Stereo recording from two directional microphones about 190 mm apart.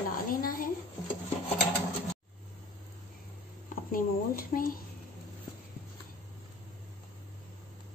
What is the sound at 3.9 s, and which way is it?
Speech, 50° left (ahead or behind).